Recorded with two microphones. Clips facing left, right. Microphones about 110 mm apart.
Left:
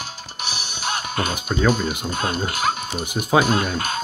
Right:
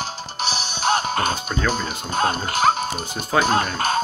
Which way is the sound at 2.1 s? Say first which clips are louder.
Right 3 dB; 35° right (ahead or behind).